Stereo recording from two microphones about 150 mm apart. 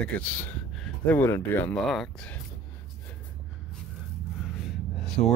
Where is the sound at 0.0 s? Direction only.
10° left (ahead or behind).